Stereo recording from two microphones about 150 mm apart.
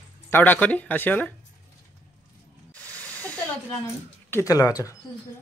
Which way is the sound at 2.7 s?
10° left (ahead or behind).